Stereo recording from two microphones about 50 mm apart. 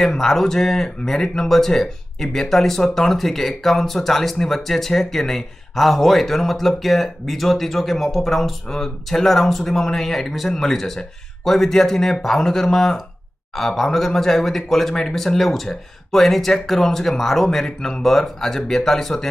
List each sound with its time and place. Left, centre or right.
0.0 s speech: centre